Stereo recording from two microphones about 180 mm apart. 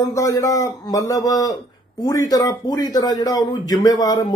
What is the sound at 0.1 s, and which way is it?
Speech, 15° left (ahead or behind).